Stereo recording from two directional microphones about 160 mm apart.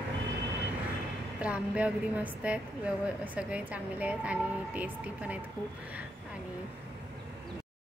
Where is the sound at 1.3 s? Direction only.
10° right (ahead or behind).